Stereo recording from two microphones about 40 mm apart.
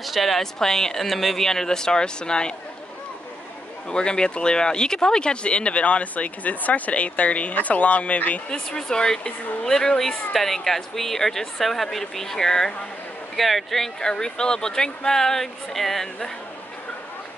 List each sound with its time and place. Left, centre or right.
0.0 s speech: centre; by 2.5 s left
3.9 s speech: left
8.5 s speech: centre
13.4 s speech: centre
14.0 s speech: centre